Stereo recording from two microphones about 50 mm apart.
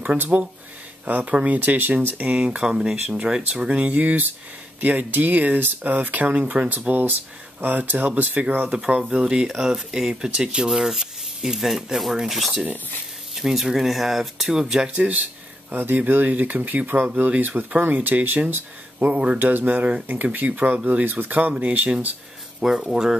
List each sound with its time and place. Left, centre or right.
0.0 s speech: right
1.3 s speech: right
1.6 s speech: right
2.3 s speech: centre
3.9 s speech: right
6.9 s speech: right
9.1 s speech: centre
15.0 s speech: right
15.7 s speech: right
18.9 s speech: right
19.3 s speech: right
22.6 s speech: centre